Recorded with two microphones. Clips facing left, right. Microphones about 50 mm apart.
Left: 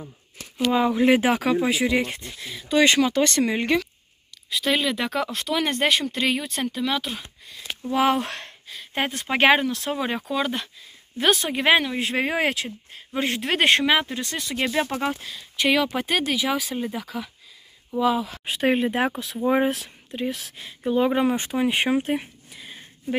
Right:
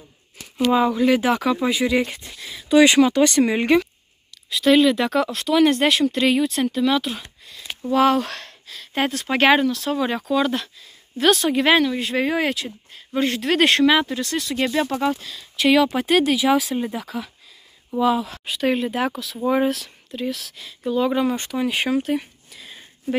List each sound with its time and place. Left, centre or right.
0.7 s speech: centre
0.9 s speech: left; by 3.9 s centre
4.5 s speech: centre
7.9 s speech: centre
12.0 s speech: left
13.4 s speech: centre
15.6 s speech: centre
18.4 s speech: left
20.5 s speech: left